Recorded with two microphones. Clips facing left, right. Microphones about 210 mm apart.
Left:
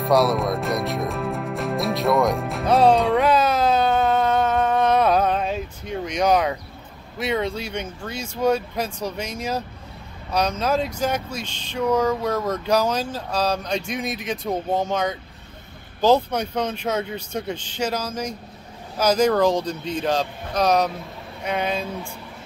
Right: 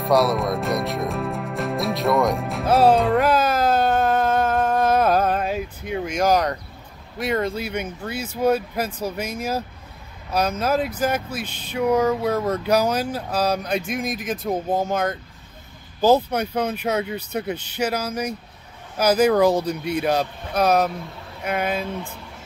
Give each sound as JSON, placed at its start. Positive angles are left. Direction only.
{"t": 0.0, "sound": "music", "side_deg": 0}
{"t": 7.2, "sound": "speech", "side_deg": 0}
{"t": 10.6, "sound": "speech", "side_deg": -5}